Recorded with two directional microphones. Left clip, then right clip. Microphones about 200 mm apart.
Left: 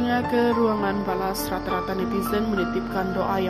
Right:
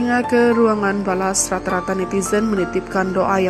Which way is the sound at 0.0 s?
25° right (ahead or behind).